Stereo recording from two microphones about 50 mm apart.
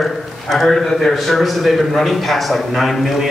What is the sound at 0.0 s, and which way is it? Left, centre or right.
A man's voice, centre.